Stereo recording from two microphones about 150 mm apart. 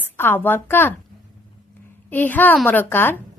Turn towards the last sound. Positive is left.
turn(degrees=15)  # may be behind; listen again after turning